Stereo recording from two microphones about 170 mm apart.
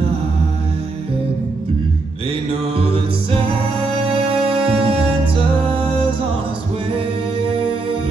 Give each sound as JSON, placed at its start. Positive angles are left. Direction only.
{"t": 2.7, "sound": "music", "side_deg": -35}
{"t": 4.7, "sound": "music", "side_deg": -35}